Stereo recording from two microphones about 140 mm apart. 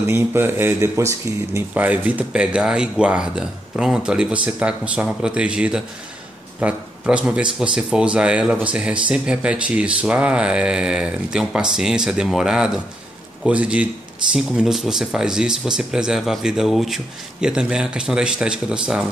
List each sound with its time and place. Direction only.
0.0 s speech: 15° right (ahead or behind)